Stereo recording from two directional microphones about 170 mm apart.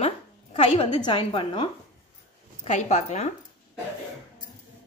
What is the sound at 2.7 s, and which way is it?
Speech, 45° left (ahead or behind).